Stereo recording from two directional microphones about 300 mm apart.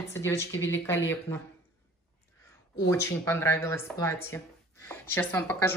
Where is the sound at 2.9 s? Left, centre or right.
Centre.